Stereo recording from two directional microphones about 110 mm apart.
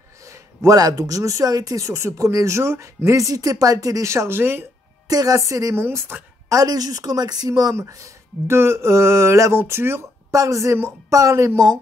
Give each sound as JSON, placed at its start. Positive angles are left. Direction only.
{"t": 0.2, "sound": "speech", "side_deg": -30}
{"t": 5.0, "sound": "a woman's voice", "side_deg": -35}
{"t": 6.6, "sound": "speech", "side_deg": -35}